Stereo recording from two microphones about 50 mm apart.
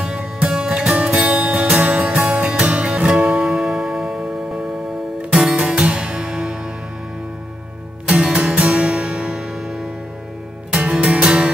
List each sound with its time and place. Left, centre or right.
0.0 s music: centre
8.1 s music: right